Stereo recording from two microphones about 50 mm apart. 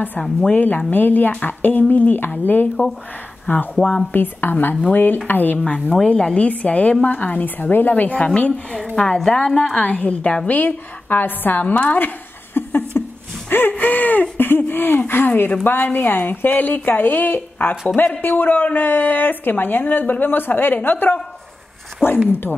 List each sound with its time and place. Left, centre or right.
0.6 s speech: left
3.8 s a woman's voice: centre
4.1 s a woman's voice: left
8.7 s a woman's voice: centre
10.6 s speech: left
12.5 s a sound: left
13.5 s speech: left
22.0 s speech: centre